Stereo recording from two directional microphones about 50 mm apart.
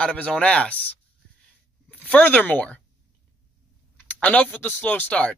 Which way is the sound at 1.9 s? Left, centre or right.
Left.